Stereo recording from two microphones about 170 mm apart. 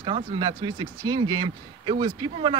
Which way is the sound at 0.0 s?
25° right (ahead or behind).